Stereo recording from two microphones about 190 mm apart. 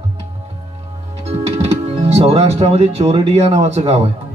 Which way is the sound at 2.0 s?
30° right (ahead or behind).